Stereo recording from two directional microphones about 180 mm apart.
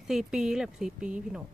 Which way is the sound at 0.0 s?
5° right (ahead or behind).